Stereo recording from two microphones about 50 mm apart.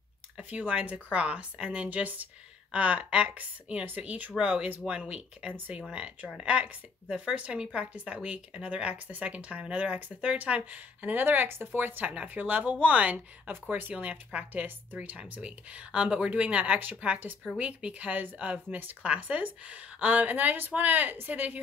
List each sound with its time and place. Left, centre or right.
0.4 s a woman's voice: right
13.7 s a woman's voice: right
13.9 s a woman's voice: right